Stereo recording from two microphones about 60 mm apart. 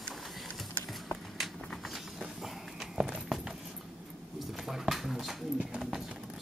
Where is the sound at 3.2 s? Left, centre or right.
Centre.